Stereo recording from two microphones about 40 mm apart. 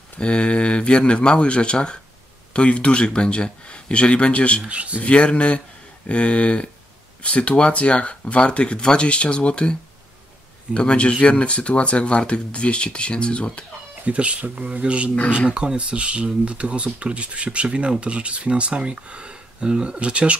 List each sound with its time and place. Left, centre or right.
0.2 s speech: left
4.6 s speech: right
5.0 s speech: left
14.0 s speech: right